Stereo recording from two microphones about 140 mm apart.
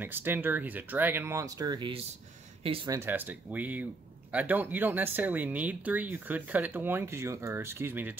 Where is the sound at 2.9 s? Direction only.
15° right (ahead or behind).